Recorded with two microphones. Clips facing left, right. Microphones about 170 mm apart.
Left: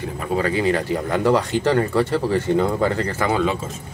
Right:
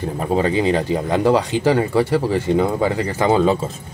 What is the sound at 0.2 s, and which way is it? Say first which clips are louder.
Speech: right 3 dB; 25° right (ahead or behind).